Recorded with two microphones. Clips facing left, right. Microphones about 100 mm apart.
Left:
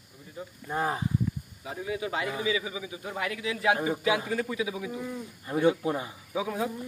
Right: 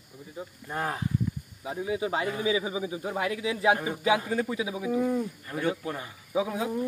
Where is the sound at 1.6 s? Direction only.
20° right (ahead or behind).